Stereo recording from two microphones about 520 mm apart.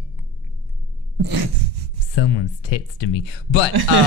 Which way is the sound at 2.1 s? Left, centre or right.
Left.